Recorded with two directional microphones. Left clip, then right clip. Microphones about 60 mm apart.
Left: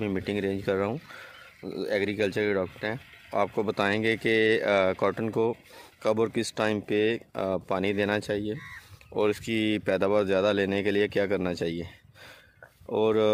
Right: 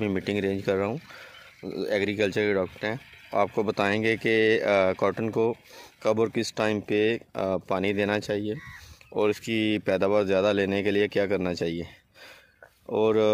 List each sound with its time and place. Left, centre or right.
0.0 s speech: right
0.7 s speech: centre
1.6 s speech: right; by 13.3 s centre